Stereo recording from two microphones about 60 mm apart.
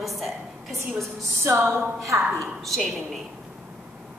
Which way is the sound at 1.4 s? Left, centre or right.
Right.